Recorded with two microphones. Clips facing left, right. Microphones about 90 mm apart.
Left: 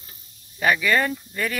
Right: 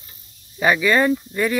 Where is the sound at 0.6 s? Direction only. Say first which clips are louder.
Right 3 dB; 20° right (ahead or behind).